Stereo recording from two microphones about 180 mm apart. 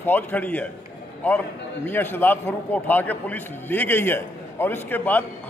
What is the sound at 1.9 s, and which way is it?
A man's voice, 10° left (ahead or behind).